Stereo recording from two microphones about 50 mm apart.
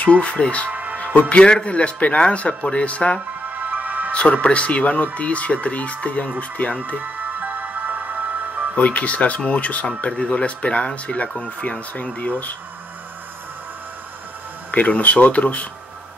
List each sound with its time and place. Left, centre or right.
0.0 s speech: left
0.7 s music: right
0.9 s music: left
1.3 s speech: left
3.5 s music: right
4.1 s speech: left
7.3 s music: right
8.7 s speech: left
12.2 s speech: left
14.7 s speech: left